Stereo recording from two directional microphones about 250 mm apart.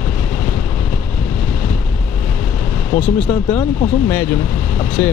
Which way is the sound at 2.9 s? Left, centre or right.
Left.